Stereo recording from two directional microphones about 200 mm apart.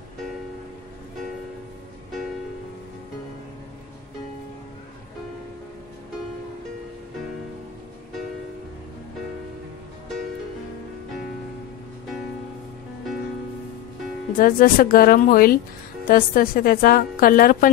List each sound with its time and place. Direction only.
14.3 s a woman's voice: 45° left (ahead or behind)